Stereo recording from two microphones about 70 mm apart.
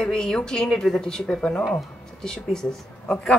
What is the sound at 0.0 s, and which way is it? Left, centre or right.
Speech, centre.